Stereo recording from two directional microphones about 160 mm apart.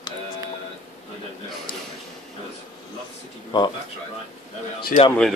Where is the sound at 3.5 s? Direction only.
30° left (ahead or behind).